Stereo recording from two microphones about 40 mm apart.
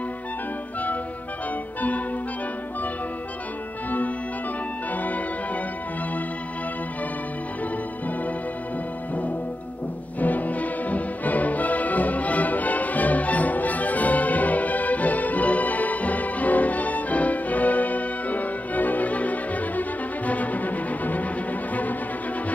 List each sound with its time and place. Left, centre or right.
4.9 s music: left
10.2 s music: left